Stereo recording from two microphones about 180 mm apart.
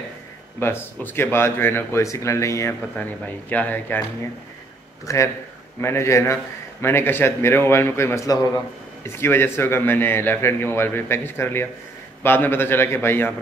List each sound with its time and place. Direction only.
0.6 s speech: 10° left (ahead or behind)
5.0 s speech: 15° left (ahead or behind)